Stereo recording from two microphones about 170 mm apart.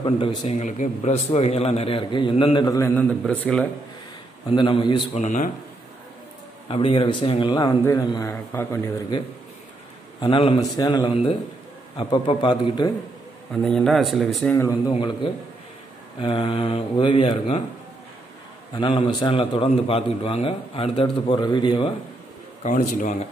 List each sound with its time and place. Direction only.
0.0 s a man's voice: 35° left (ahead or behind); by 3.6 s 5° left (ahead or behind)
4.5 s a man's voice: 30° left (ahead or behind)
5.1 s a man's voice: 45° left (ahead or behind)
6.7 s a man's voice: 35° left (ahead or behind); by 8.9 s 15° left (ahead or behind)
10.2 s a man's voice: 30° left (ahead or behind)
11.1 s a man's voice: 35° left (ahead or behind)
13.5 s speech: 5° left (ahead or behind)
14.5 s a man's voice: 20° left (ahead or behind)
16.2 s a man's voice: 30° left (ahead or behind)
18.8 s a man's voice: 30° left (ahead or behind)
22.6 s a man's voice: 50° left (ahead or behind)